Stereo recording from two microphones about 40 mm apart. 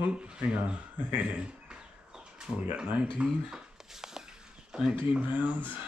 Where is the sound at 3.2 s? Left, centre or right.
Right.